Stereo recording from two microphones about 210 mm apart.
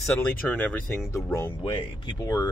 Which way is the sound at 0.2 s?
5° left (ahead or behind).